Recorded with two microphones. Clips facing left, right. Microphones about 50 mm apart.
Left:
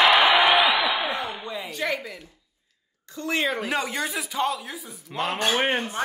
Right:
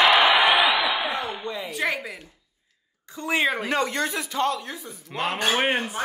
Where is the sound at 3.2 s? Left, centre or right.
Centre.